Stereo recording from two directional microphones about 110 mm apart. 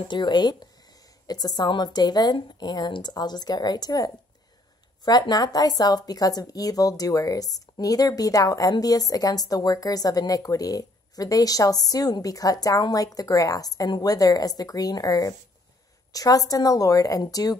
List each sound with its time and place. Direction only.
0.1 s a woman's voice: 40° left (ahead or behind)